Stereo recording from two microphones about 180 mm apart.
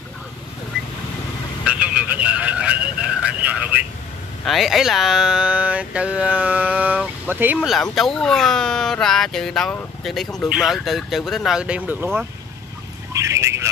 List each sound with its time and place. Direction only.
1.6 s a man's voice: 5° right (ahead or behind)
7.7 s speech: centre (ahead or behind)
13.1 s vehicle: 15° right (ahead or behind)